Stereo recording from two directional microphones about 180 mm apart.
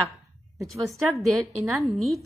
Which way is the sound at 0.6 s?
Centre (ahead or behind).